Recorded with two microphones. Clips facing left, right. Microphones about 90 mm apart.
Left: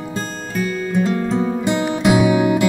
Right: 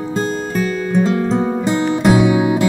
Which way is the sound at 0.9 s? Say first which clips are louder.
Right 3 dB; 20° right (ahead or behind).